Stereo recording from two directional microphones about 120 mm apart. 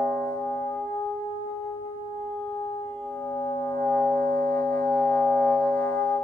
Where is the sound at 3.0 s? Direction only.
20° left (ahead or behind).